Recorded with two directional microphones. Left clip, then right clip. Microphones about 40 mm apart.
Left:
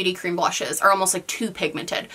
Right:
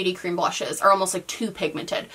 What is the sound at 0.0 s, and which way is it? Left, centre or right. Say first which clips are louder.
Speech: left 2 dB; left.